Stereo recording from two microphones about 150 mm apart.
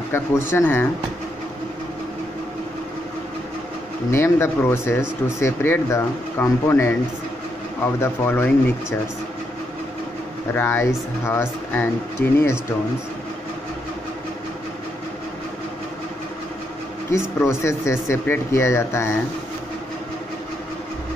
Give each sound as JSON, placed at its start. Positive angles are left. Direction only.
{"t": 0.1, "sound": "speech", "side_deg": 15}
{"t": 4.1, "sound": "speech", "side_deg": 15}
{"t": 10.5, "sound": "speech", "side_deg": 15}
{"t": 17.1, "sound": "speech", "side_deg": 20}